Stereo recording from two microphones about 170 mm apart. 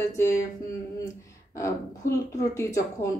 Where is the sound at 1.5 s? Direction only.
20° left (ahead or behind).